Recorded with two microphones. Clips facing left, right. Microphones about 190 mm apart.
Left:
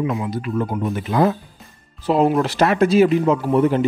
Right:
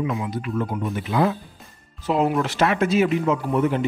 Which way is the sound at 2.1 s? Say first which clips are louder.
Left 4 dB; 35° left (ahead or behind).